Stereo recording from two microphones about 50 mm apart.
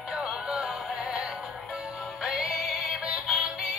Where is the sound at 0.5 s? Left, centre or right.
Centre.